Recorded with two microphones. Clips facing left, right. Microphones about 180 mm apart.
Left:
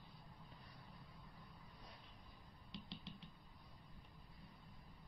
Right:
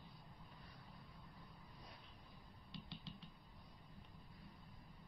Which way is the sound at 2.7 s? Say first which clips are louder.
Left 1 dB; 20° left (ahead or behind).